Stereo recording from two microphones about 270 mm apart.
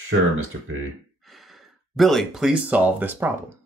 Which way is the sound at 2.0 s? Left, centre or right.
Centre.